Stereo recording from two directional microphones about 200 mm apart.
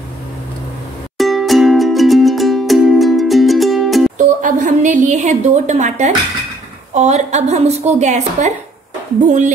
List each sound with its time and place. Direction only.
1.1 s music: centre (ahead or behind)
4.2 s a woman's voice: 40° right (ahead or behind)